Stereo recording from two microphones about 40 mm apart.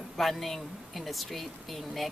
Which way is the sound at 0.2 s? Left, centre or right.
Centre.